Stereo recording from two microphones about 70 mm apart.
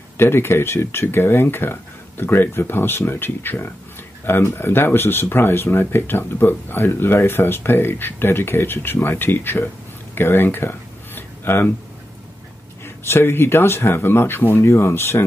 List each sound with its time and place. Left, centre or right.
0.2 s speech: left
10.1 s a sound: left
12.8 s speech: left